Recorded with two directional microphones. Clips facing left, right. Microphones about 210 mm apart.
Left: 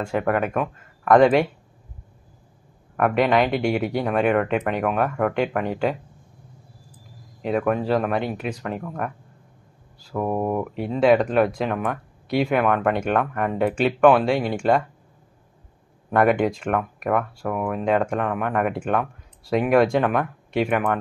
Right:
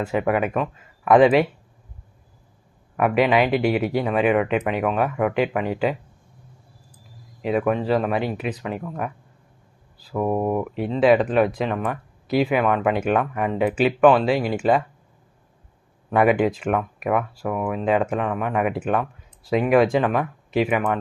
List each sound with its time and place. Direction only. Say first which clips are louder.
0.0 s speech: right 1 dB; 5° right (ahead or behind)
3.0 s speech: right 1 dB; 5° right (ahead or behind)
7.4 s speech: right 1 dB; centre (ahead or behind)
16.1 s speech: right 1 dB; 5° right (ahead or behind)